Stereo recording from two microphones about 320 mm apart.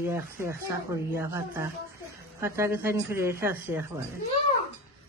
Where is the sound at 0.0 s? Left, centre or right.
Centre.